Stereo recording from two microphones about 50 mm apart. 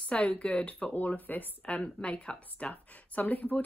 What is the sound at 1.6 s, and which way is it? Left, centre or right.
A woman's voice, left.